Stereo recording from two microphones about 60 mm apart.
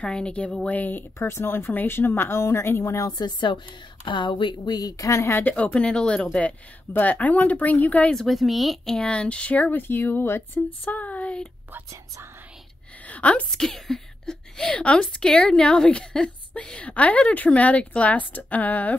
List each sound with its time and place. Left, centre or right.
0.0 s speech: centre
1.2 s speech: left
4.7 s speech: left
5.4 s a woman's voice: centre
6.9 s speech: left
8.1 s speech: centre
8.9 s speech: centre; by 10.6 s left
10.9 s a sound: left
13.0 s a sound: left
13.5 s a woman's voice: centre; by 18.9 s left